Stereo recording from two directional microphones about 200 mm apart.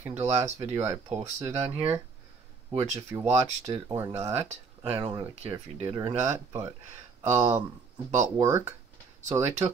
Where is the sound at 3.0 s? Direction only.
15° right (ahead or behind).